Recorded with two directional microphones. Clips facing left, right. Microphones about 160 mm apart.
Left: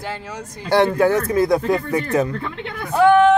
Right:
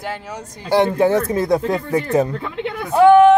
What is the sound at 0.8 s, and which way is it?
Speech, 25° right (ahead or behind).